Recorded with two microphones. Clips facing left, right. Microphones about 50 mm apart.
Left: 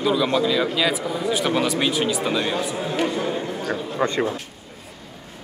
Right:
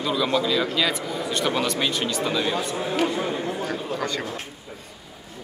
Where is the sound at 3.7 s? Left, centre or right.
Left.